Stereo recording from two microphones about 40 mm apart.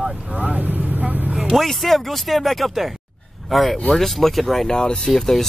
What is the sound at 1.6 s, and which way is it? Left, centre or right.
Speech, centre.